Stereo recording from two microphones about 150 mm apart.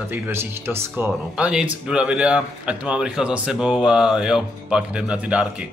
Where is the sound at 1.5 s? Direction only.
5° right (ahead or behind).